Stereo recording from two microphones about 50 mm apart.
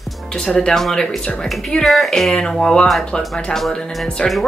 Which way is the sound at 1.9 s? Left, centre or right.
Centre.